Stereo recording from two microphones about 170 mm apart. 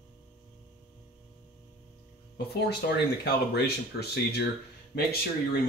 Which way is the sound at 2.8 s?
70° left (ahead or behind).